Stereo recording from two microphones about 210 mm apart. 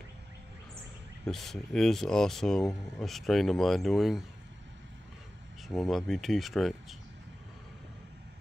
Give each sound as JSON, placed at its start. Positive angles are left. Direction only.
{"t": 1.2, "sound": "speech", "side_deg": 0}
{"t": 5.8, "sound": "speech", "side_deg": 0}